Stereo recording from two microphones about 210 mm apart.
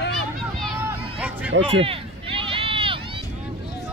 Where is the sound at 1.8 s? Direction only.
25° right (ahead or behind).